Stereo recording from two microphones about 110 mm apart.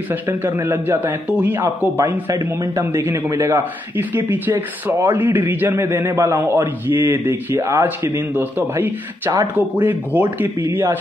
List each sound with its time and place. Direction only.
0.1 s speech: 20° right (ahead or behind)